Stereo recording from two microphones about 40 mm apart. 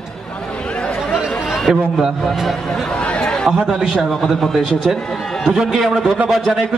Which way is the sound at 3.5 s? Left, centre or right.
Centre.